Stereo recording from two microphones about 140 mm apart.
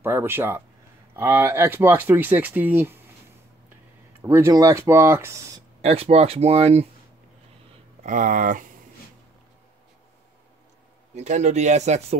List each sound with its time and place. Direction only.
0.0 s speech: 15° right (ahead or behind)
4.2 s speech: 15° right (ahead or behind)
5.8 s speech: 45° right (ahead or behind)
8.0 s speech: 70° right (ahead or behind)
11.1 s speech: 55° right (ahead or behind)